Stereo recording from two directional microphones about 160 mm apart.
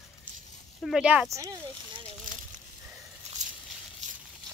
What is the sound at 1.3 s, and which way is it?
Speech, 20° right (ahead or behind).